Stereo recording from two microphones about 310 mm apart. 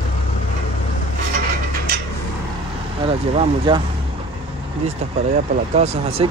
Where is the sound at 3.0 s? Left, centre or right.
Centre.